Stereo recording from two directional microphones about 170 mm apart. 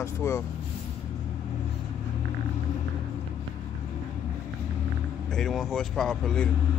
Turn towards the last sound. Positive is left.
turn(degrees=5)  # may be behind; listen again after turning